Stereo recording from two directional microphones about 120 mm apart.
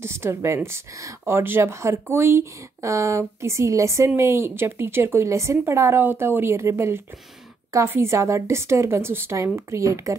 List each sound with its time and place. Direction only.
0.0 s speech: 20° right (ahead or behind)